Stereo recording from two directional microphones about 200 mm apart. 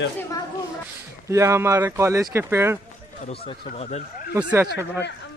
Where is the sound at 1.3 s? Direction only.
15° right (ahead or behind).